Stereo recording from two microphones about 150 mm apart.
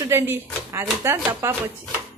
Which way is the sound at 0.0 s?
15° right (ahead or behind).